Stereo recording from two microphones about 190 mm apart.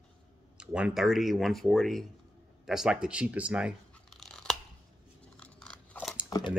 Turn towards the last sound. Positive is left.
turn(degrees=20)  # may be behind; listen again after turning